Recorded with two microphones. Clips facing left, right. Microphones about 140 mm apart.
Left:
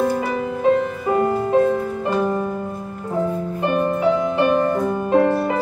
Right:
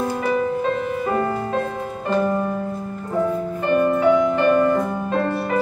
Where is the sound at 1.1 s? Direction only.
20° left (ahead or behind).